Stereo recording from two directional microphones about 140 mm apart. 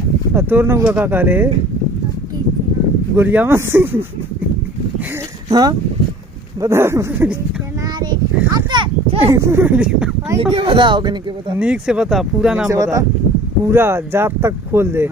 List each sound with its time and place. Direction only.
0.3 s speech: 15° right (ahead or behind)
3.2 s speech: 15° right (ahead or behind)
5.5 s speech: 30° right (ahead or behind)
8.0 s a sound: 30° right (ahead or behind)
9.2 s speech: 20° right (ahead or behind)
10.3 s speech: 35° right (ahead or behind)
11.5 s speech: 10° right (ahead or behind)
12.6 s speech: 20° right (ahead or behind)